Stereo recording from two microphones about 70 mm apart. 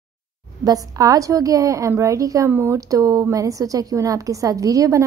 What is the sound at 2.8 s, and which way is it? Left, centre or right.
A woman's voice, right.